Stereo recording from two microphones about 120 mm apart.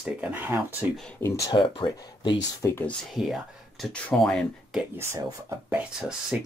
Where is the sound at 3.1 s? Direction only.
5° right (ahead or behind).